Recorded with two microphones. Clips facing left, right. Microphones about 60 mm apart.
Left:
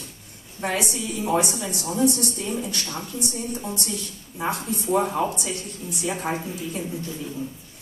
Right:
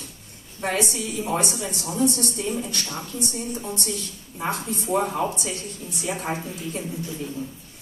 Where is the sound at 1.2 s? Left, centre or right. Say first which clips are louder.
Left 3 dB; centre.